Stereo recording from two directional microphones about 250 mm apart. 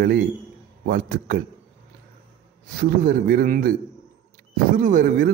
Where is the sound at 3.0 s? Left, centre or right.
Right.